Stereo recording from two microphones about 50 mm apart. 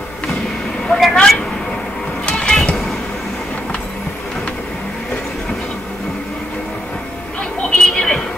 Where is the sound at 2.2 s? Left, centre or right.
Centre.